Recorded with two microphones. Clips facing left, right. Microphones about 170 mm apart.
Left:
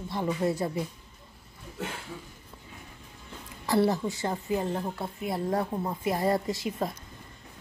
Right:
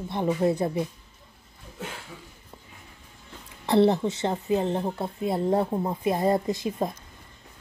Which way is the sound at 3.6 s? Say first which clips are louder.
Right 5 dB; 25° right (ahead or behind).